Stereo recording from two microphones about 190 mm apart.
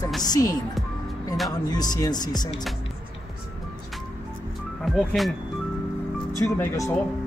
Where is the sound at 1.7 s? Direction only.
20° left (ahead or behind).